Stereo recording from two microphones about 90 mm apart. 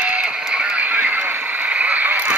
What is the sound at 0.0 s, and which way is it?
Music, 10° right (ahead or behind).